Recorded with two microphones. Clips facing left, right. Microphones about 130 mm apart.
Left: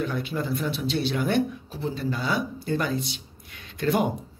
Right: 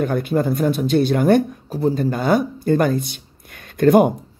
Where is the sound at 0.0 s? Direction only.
50° right (ahead or behind).